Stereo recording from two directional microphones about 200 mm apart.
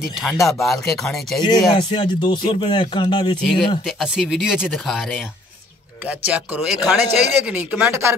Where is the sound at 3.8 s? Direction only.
Centre (ahead or behind).